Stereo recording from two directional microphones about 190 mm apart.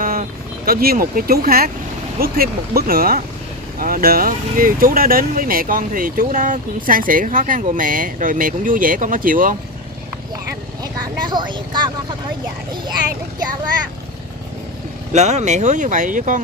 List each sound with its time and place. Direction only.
0.0 s speech: 50° right (ahead or behind)
10.8 s speech: 25° right (ahead or behind)
15.1 s speech: 35° right (ahead or behind)